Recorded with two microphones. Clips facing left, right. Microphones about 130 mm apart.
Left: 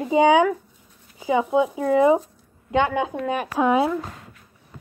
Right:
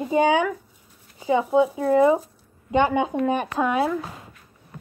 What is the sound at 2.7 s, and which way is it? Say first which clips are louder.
Speech: right 1 dB; centre (ahead or behind).